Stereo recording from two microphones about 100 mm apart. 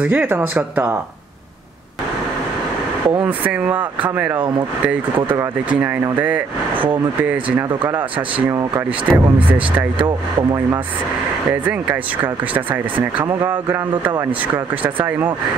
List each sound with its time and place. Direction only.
0.0 s speech: 15° right (ahead or behind)
3.1 s speech: 15° right (ahead or behind)
5.7 s speech: 15° right (ahead or behind)
9.1 s speech: 15° right (ahead or behind)
13.4 s speech: 20° right (ahead or behind)